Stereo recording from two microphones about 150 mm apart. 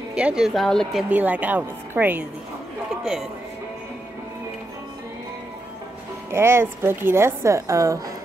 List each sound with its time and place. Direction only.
0.1 s speech: 5° right (ahead or behind)
1.1 s a woman's voice: 10° right (ahead or behind)
6.3 s a woman's voice: 15° right (ahead or behind)